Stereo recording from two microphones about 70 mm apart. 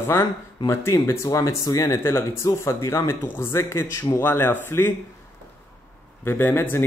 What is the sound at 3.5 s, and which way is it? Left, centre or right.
Speech, left.